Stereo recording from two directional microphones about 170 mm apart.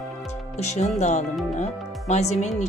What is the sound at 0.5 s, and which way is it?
Speech, 40° left (ahead or behind).